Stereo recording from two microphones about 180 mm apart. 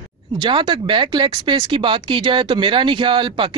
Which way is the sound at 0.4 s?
25° right (ahead or behind).